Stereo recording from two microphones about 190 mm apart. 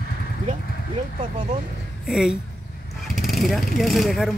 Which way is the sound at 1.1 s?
40° right (ahead or behind).